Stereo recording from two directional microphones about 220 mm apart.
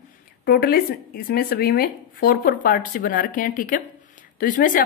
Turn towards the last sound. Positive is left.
turn(degrees=40)  # may be behind; listen again after turning